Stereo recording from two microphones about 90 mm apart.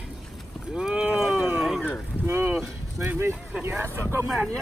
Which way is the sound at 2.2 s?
25° right (ahead or behind).